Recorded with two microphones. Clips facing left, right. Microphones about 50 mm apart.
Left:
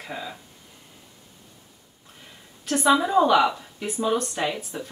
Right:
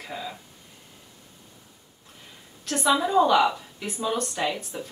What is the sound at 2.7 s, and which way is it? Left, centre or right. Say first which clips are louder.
Speech: left 3 dB; left.